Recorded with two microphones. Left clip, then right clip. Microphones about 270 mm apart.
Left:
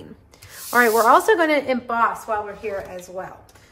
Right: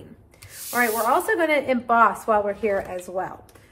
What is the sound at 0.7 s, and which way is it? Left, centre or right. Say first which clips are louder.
A woman's voice: left 6 dB; centre.